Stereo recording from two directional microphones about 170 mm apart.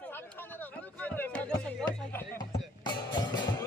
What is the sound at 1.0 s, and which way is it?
Music, 10° left (ahead or behind).